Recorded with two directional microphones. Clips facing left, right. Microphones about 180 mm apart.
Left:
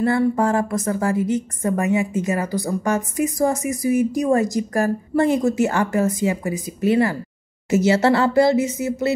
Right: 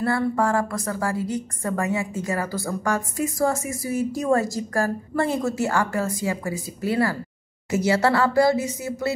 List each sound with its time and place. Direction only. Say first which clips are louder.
0.0 s a woman's voice: left 4 dB; 20° left (ahead or behind)